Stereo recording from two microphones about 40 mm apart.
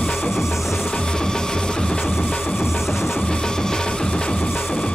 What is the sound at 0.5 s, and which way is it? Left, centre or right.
Music, centre.